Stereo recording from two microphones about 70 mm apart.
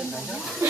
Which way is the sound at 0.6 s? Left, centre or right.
Right.